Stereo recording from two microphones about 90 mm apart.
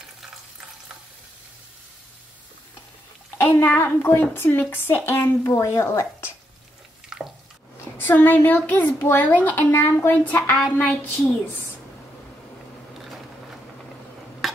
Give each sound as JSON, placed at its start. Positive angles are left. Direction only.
{"t": 3.3, "sound": "a woman's voice", "side_deg": 25}
{"t": 7.1, "sound": "water", "side_deg": -5}
{"t": 8.0, "sound": "a woman's voice", "side_deg": 20}
{"t": 14.4, "sound": "stir", "side_deg": 0}